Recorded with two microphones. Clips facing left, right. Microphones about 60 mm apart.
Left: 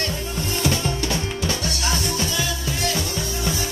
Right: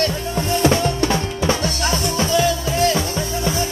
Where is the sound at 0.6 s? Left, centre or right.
Right.